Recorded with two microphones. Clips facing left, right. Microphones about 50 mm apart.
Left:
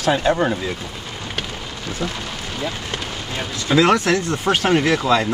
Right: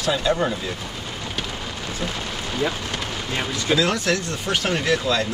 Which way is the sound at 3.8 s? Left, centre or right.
Left.